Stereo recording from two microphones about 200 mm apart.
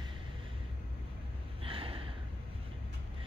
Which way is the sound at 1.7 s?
25° right (ahead or behind).